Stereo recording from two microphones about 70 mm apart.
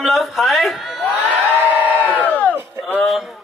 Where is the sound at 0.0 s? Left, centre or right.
Centre.